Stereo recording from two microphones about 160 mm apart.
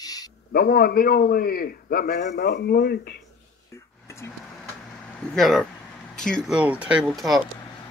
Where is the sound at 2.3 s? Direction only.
75° left (ahead or behind).